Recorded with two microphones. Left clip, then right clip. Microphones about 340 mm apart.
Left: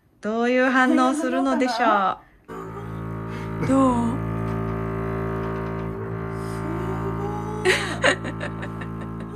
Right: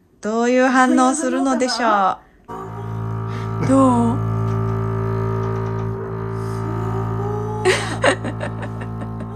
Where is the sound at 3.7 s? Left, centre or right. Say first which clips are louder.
Right 5 dB; centre.